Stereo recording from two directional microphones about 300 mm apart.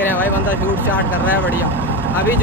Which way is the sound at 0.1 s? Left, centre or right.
Centre.